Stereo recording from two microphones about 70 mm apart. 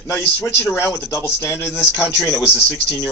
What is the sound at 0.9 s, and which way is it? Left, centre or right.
Speech, left.